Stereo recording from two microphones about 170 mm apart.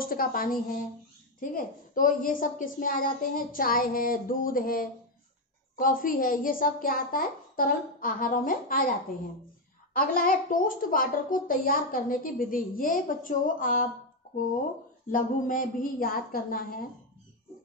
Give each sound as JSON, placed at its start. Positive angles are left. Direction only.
{"t": 0.0, "sound": "a woman's voice", "side_deg": 60}
{"t": 9.9, "sound": "a woman's voice", "side_deg": 55}
{"t": 15.0, "sound": "a woman's voice", "side_deg": 50}